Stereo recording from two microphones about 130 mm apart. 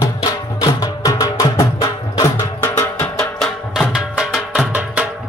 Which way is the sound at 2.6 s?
15° left (ahead or behind).